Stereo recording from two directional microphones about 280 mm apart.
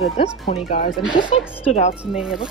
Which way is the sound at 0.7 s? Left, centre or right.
Left.